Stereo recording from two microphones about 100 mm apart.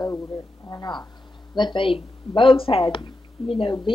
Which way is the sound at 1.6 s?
55° left (ahead or behind).